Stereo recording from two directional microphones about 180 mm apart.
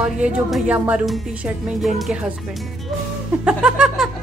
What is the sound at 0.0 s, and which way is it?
A woman's voice, 5° right (ahead or behind).